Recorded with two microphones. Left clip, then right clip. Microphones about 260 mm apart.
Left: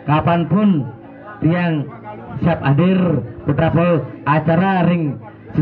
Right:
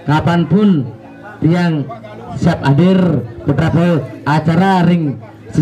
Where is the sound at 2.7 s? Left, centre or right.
Right.